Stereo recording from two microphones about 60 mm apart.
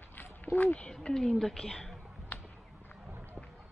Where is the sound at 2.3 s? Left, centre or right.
Left.